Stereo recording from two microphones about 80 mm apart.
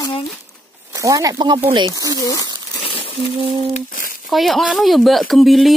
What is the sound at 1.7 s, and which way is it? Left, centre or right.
Speech, right.